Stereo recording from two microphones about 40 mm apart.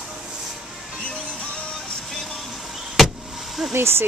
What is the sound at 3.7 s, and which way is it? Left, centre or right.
Speech, right.